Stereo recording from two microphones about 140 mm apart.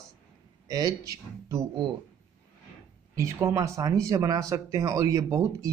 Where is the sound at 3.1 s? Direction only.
20° right (ahead or behind).